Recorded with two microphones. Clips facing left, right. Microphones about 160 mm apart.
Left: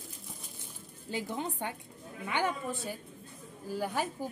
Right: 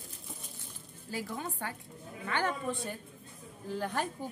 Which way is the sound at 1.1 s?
25° left (ahead or behind).